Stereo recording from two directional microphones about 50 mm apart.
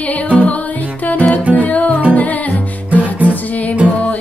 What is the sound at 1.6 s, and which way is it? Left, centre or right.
Music, left.